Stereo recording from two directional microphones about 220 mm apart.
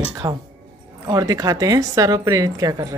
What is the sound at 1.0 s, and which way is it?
A woman's voice, 15° right (ahead or behind).